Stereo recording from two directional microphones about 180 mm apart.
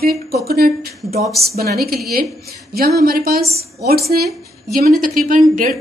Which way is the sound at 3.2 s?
55° right (ahead or behind).